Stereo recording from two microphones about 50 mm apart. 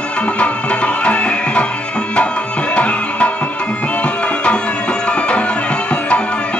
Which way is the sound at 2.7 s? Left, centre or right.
Left.